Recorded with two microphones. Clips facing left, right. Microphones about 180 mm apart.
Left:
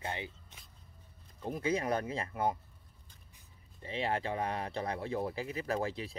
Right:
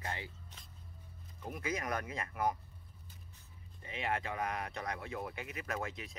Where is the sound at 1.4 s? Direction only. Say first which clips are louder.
Left 6 dB; 30° left (ahead or behind).